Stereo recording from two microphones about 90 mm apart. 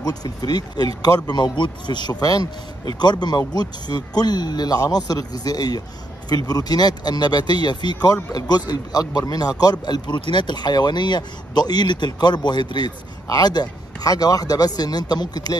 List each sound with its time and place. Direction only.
0.0 s speech: 45° left (ahead or behind)